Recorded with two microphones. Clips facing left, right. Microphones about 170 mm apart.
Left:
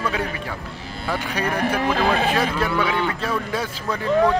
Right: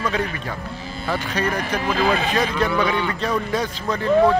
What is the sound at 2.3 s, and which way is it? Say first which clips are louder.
A man's voice: right 1 dB; 5° left (ahead or behind).